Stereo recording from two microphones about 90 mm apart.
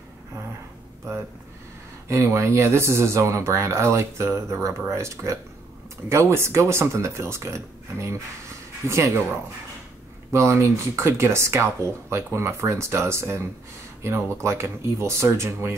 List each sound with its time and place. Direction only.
2.0 s speech: 30° right (ahead or behind)
10.3 s speech: 30° right (ahead or behind)